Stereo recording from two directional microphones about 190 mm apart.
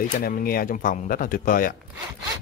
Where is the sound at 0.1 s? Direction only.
45° left (ahead or behind).